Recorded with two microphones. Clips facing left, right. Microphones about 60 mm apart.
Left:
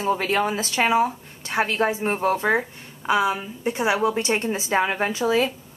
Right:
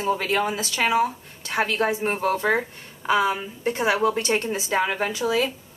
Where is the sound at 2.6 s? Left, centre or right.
Centre.